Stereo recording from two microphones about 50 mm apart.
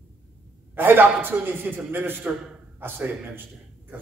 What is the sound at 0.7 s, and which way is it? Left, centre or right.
A man's voice, right.